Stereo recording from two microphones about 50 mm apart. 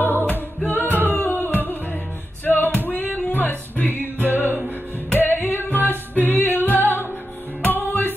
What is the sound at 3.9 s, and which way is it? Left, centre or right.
Music, right.